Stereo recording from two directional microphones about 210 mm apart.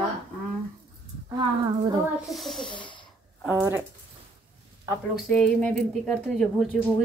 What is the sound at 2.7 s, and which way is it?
Sneeze, 20° left (ahead or behind).